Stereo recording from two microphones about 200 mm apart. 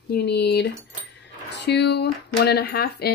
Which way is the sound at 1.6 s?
55° left (ahead or behind).